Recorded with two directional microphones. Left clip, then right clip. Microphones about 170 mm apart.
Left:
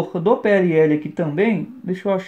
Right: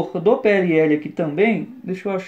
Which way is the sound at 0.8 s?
40° left (ahead or behind).